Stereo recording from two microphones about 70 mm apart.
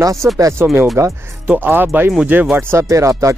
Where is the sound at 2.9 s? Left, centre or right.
Right.